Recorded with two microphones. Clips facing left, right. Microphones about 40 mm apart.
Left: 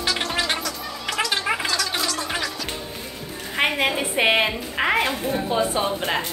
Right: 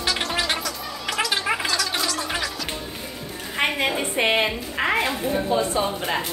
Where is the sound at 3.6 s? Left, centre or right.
Centre.